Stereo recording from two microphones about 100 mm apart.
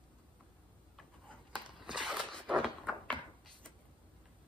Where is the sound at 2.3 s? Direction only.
10° left (ahead or behind).